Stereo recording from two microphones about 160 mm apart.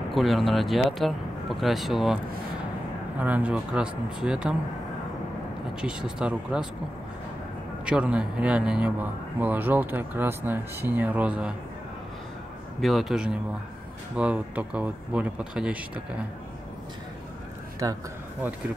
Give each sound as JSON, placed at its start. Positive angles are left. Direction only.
{"t": 0.1, "sound": "speech", "side_deg": 0}
{"t": 3.2, "sound": "speech", "side_deg": -10}
{"t": 5.8, "sound": "speech", "side_deg": -5}
{"t": 7.8, "sound": "a man's voice", "side_deg": -5}
{"t": 12.8, "sound": "a man's voice", "side_deg": 0}
{"t": 17.8, "sound": "speech", "side_deg": -20}